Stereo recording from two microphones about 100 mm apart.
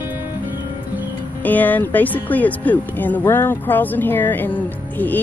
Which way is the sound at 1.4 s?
15° left (ahead or behind).